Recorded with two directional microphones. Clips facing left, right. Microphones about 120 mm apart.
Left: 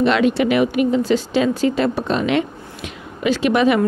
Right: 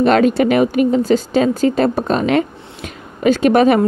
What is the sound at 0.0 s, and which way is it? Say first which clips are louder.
Speech: right 4 dB; 45° right (ahead or behind).